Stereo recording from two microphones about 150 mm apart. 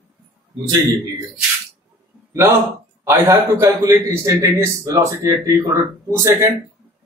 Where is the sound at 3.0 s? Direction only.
20° right (ahead or behind).